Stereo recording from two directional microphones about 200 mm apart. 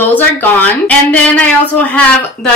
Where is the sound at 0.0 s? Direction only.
10° left (ahead or behind).